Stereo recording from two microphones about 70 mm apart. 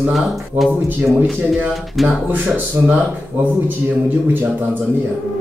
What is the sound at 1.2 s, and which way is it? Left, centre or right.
Speech, centre.